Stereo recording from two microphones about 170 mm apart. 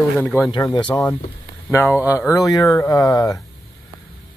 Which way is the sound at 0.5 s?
25° left (ahead or behind).